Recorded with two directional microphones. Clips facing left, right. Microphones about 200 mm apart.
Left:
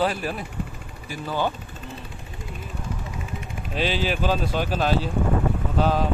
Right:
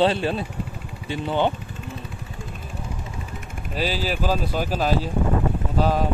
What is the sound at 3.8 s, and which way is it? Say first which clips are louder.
Speech: left 1 dB; 5° right (ahead or behind).